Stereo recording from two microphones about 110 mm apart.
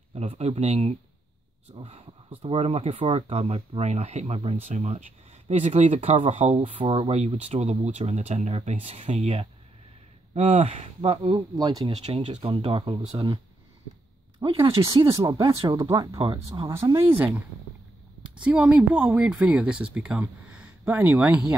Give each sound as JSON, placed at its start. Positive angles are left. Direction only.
{"t": 0.1, "sound": "speech", "side_deg": -70}
{"t": 1.8, "sound": "speech", "side_deg": -60}
{"t": 5.9, "sound": "speech", "side_deg": -65}
{"t": 6.8, "sound": "speech", "side_deg": -65}
{"t": 11.3, "sound": "speech", "side_deg": -35}
{"t": 11.8, "sound": "speech", "side_deg": -60}
{"t": 14.4, "sound": "speech", "side_deg": -50}
{"t": 16.2, "sound": "speech", "side_deg": -50}
{"t": 18.4, "sound": "speech", "side_deg": -10}